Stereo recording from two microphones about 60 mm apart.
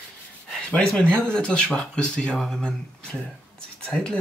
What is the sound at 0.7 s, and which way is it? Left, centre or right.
Speech, centre.